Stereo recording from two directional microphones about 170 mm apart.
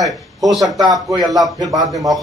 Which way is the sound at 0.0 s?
Centre (ahead or behind).